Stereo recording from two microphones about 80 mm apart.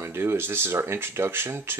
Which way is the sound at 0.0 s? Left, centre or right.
Right.